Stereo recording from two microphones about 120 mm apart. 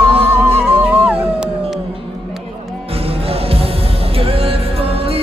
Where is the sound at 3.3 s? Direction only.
55° right (ahead or behind).